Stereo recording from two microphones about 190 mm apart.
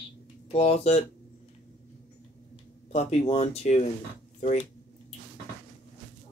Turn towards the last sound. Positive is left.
turn(degrees=35)  # may be behind; listen again after turning